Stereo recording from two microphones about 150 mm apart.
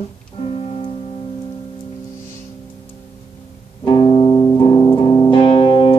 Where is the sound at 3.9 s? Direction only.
35° left (ahead or behind).